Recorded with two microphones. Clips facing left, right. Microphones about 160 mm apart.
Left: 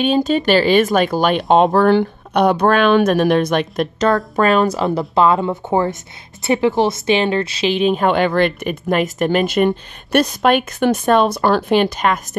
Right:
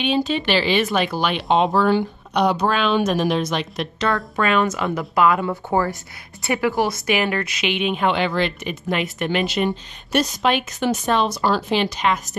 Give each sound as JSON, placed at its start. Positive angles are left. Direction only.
{"t": 0.0, "sound": "speech", "side_deg": 45}